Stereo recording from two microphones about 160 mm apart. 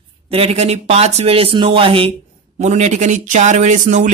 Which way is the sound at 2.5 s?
45° right (ahead or behind).